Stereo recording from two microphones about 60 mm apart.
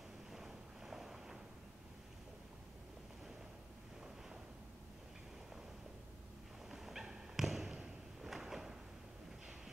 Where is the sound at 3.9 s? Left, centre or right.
Centre.